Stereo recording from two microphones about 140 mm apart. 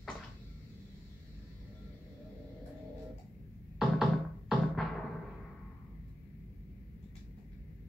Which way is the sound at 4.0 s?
Centre (ahead or behind).